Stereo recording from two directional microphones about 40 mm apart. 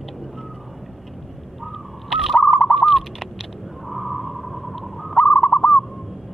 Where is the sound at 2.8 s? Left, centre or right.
Centre.